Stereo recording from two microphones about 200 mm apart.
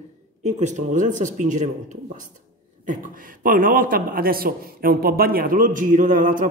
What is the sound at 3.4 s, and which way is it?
A man's voice, 45° right (ahead or behind).